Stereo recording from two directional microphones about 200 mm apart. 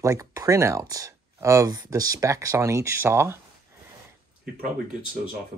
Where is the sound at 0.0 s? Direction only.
15° right (ahead or behind).